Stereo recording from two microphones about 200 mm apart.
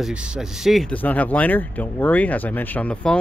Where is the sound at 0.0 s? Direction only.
5° right (ahead or behind).